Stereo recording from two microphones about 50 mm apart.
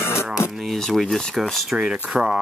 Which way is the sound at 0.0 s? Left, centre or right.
Left.